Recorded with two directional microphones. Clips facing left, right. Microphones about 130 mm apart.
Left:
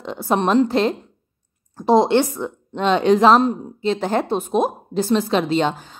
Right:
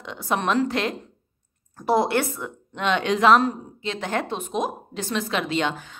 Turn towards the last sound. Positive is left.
turn(degrees=35)  # may be behind; listen again after turning